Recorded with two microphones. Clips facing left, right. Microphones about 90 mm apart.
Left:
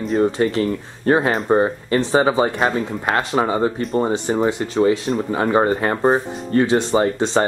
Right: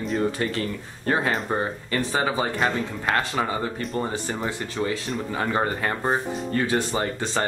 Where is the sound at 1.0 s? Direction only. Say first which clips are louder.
Left 7 dB; 35° left (ahead or behind).